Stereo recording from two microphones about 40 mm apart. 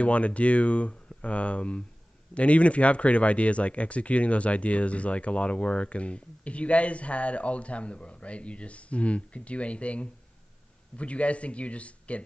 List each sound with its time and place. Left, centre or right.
0.0 s speech: left